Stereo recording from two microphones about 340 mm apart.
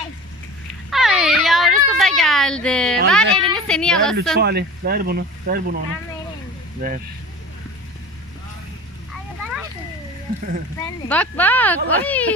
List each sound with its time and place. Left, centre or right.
0.8 s a sound: centre
3.5 s a woman's voice: centre
4.4 s speech: right
6.8 s speech: right
10.8 s speech: centre